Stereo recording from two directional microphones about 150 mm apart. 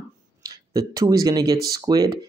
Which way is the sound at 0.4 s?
25° right (ahead or behind).